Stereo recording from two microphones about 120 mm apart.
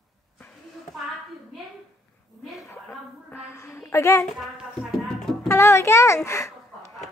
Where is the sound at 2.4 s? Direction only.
Centre (ahead or behind).